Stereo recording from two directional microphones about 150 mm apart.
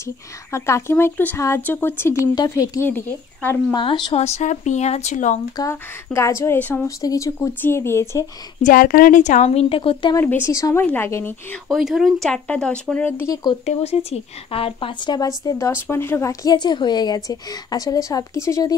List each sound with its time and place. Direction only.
0.0 s speech: 20° left (ahead or behind)
4.2 s speech: 50° left (ahead or behind)
5.6 s speech: 20° left (ahead or behind)
7.0 s speech: 25° left (ahead or behind)
8.6 s speech: 70° left (ahead or behind); by 10.1 s 35° left (ahead or behind)
10.1 s speech: 15° left (ahead or behind)
11.7 s speech: centre (ahead or behind); by 13.4 s 15° left (ahead or behind)
13.7 s speech: 45° left (ahead or behind); by 18.8 s 20° left (ahead or behind)